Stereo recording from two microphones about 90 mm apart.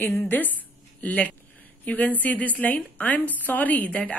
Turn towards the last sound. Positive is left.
turn(degrees=15)  # may be behind; listen again after turning